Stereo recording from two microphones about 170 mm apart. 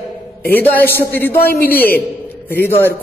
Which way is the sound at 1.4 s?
65° left (ahead or behind).